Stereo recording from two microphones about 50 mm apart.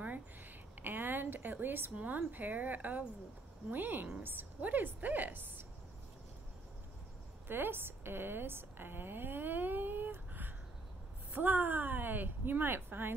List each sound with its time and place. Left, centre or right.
0.8 s a sound: right
2.0 s speech: right
7.4 s a woman's voice: right